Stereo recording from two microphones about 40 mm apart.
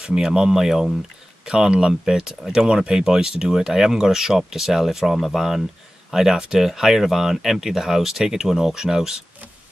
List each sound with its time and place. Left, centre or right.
0.0 s speech: centre